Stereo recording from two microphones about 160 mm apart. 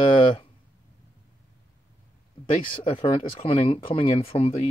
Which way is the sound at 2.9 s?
35° left (ahead or behind).